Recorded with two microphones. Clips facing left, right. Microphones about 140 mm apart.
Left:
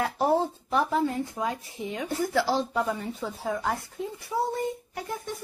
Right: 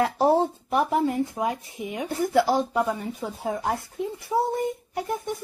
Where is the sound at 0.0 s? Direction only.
25° right (ahead or behind).